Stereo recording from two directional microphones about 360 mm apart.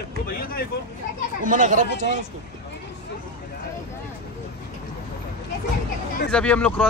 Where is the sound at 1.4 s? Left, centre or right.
Right.